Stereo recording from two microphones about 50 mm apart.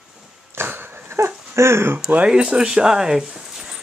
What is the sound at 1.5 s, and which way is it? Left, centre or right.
Speech, right.